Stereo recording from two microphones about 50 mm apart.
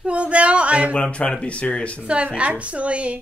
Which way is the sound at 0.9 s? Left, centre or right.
Left.